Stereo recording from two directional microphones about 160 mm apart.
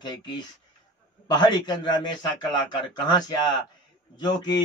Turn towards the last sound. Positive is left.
turn(degrees=25)  # may be behind; listen again after turning